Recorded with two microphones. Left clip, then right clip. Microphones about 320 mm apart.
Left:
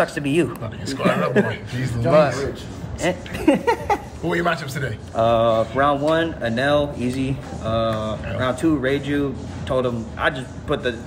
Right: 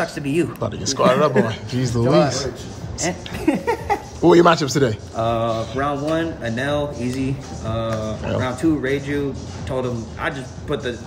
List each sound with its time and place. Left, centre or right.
0.0 s a man's voice: centre
3.0 s speech: centre
4.3 s a man's voice: centre
5.1 s speech: centre